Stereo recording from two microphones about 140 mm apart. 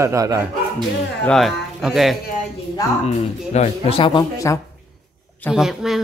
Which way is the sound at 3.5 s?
45° left (ahead or behind).